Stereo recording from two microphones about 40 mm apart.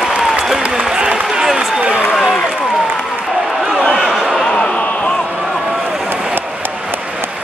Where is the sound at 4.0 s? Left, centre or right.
Centre.